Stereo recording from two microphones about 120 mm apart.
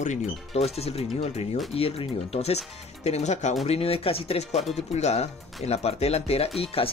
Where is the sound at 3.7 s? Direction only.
55° left (ahead or behind).